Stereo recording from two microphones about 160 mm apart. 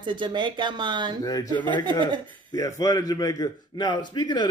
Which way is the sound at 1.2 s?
25° left (ahead or behind).